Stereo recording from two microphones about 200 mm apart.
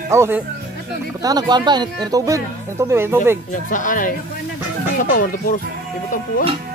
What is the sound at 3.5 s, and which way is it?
Speech, 40° left (ahead or behind).